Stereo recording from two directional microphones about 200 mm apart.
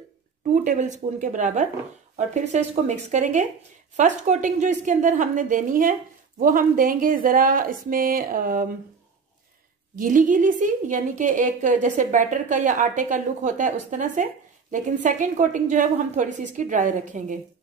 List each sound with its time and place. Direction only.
0.7 s a woman's voice: 40° right (ahead or behind)
9.9 s a woman's voice: 40° right (ahead or behind)